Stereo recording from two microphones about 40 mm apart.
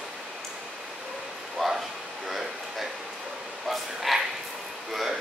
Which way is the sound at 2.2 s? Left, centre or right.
Centre.